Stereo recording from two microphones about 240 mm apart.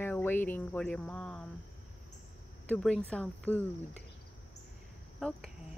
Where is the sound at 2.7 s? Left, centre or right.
Centre.